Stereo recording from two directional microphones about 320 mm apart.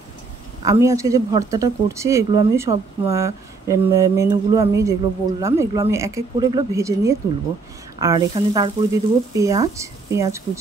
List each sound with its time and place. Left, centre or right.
0.6 s speech: centre